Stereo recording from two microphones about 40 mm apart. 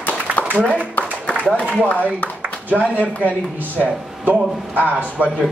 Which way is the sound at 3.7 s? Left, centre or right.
Right.